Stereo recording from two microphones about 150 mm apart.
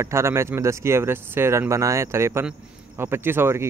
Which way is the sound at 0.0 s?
15° right (ahead or behind).